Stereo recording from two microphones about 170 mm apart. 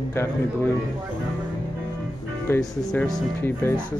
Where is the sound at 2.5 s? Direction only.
15° left (ahead or behind).